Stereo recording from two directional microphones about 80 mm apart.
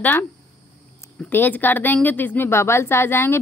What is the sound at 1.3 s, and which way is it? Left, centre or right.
Speech, left.